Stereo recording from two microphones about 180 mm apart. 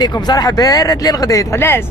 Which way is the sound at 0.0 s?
20° left (ahead or behind).